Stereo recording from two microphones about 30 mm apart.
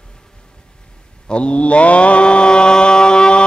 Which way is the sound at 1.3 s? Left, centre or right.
Left.